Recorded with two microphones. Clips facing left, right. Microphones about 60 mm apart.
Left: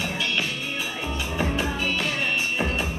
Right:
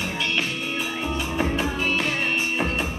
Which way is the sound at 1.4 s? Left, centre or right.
Right.